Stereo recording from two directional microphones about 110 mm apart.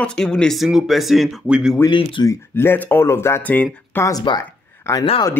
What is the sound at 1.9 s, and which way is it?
Speech, 45° left (ahead or behind).